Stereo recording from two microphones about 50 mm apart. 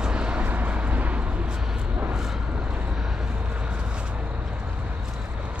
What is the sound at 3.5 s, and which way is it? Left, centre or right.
Vehicle, right.